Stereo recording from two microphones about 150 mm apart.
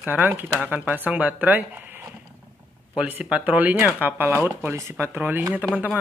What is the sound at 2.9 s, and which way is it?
Speech, 10° right (ahead or behind).